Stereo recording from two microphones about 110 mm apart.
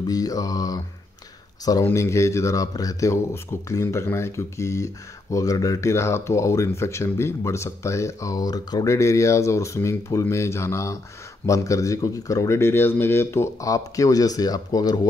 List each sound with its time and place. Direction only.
0.0 s mantra: 35° left (ahead or behind)
1.6 s speech: 35° left (ahead or behind)